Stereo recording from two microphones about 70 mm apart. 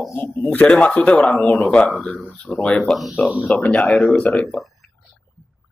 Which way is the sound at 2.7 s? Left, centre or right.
Centre.